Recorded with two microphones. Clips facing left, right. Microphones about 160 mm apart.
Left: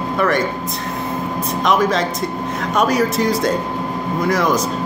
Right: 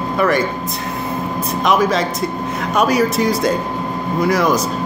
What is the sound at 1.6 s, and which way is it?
Speech, 5° right (ahead or behind).